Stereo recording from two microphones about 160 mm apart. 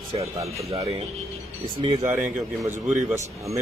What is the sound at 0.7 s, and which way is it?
Speech, 40° right (ahead or behind).